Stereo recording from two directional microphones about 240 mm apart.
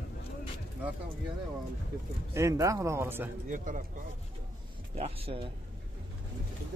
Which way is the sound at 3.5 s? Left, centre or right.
Right.